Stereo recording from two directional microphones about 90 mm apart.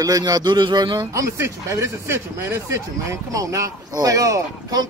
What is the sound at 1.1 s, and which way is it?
Speech, 35° right (ahead or behind).